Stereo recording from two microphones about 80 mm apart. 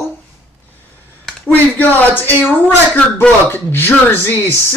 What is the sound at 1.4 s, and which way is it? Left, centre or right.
Speech, left.